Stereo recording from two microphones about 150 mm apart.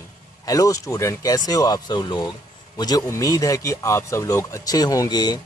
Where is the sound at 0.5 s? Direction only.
20° left (ahead or behind).